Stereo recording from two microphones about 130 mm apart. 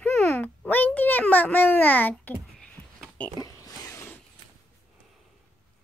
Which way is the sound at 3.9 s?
25° left (ahead or behind).